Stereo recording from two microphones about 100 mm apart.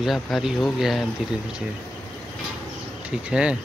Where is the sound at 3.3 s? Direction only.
10° right (ahead or behind).